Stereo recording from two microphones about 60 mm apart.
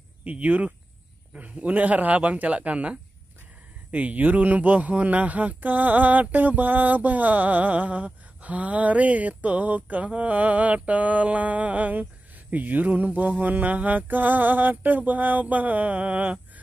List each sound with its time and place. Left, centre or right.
0.2 s speech: right